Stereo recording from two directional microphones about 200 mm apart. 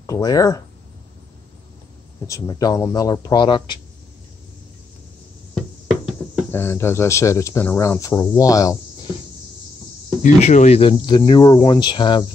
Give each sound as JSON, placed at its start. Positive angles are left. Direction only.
{"t": 0.0, "sound": "speech", "side_deg": 15}
{"t": 2.2, "sound": "speech", "side_deg": 15}
{"t": 6.5, "sound": "speech", "side_deg": 10}
{"t": 10.2, "sound": "speech", "side_deg": 35}